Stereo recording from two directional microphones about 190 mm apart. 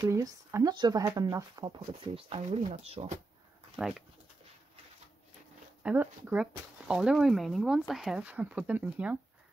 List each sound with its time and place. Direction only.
0.0 s speech: 15° right (ahead or behind)
2.1 s speech: 30° right (ahead or behind)
3.8 s speech: centre (ahead or behind)
5.8 s speech: 10° right (ahead or behind)